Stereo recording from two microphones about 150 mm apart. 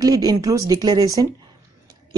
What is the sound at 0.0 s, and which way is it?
A woman's voice, 25° right (ahead or behind).